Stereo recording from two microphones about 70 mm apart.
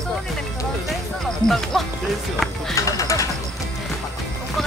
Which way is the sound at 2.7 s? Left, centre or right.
Left.